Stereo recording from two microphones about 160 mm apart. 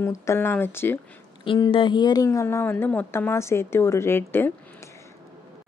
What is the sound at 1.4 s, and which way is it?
A woman's voice, 30° left (ahead or behind).